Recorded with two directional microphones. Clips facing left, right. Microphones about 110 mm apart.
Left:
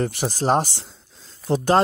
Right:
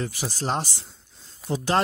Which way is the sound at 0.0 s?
55° left (ahead or behind).